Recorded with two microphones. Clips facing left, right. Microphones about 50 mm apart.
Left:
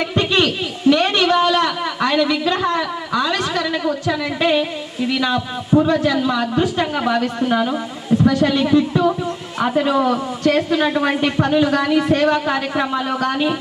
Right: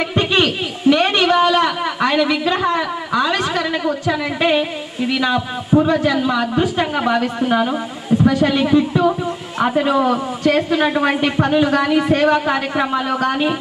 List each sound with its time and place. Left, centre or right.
0.0 s a sound: right
5.1 s a woman's voice: right
5.7 s a woman's voice: right